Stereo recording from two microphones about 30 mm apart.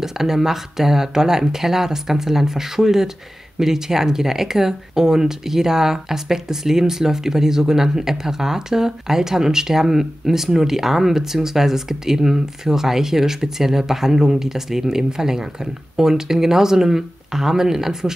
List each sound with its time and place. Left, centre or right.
0.0 s speech: centre